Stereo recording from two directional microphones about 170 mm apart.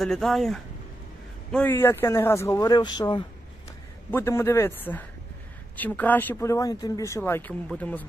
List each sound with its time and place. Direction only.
0.0 s speech: centre (ahead or behind); by 3.3 s 25° left (ahead or behind)
4.1 s speech: 15° left (ahead or behind)